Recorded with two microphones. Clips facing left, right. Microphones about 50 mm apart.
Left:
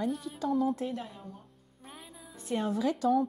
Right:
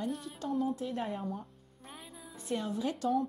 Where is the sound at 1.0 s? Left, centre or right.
Right.